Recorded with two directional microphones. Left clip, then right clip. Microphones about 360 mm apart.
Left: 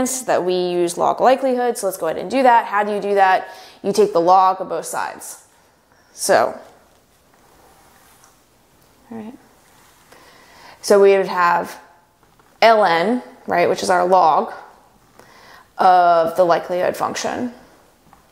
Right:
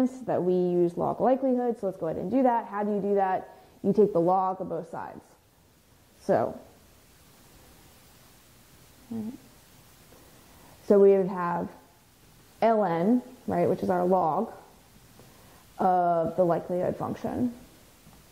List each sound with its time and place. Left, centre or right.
0.0 s a woman's voice: centre
6.2 s a woman's voice: centre
10.9 s a woman's voice: centre
15.7 s a woman's voice: centre